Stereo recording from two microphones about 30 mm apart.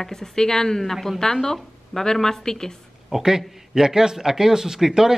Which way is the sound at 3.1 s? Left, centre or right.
Centre.